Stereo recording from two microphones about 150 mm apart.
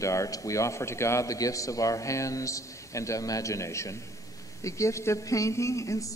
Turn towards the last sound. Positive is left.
turn(degrees=20)  # may be behind; listen again after turning